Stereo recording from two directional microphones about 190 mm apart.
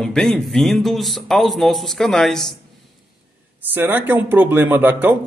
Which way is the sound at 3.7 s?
10° right (ahead or behind).